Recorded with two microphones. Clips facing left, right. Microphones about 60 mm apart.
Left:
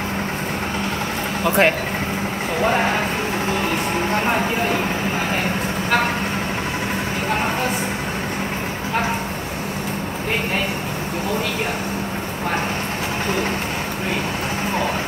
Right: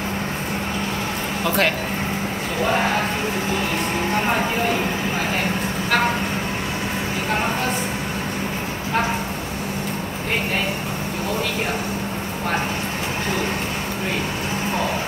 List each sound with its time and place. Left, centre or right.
1.4 s speech: left